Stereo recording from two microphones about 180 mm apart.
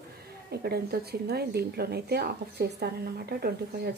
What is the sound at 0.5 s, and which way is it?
A woman's voice, 60° right (ahead or behind).